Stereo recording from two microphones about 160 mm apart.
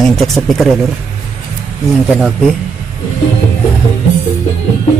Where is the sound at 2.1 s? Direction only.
5° right (ahead or behind).